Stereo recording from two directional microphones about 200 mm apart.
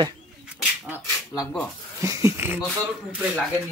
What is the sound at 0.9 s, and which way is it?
Speech, 10° left (ahead or behind).